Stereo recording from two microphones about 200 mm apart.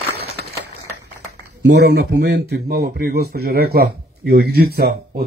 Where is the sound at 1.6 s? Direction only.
55° right (ahead or behind).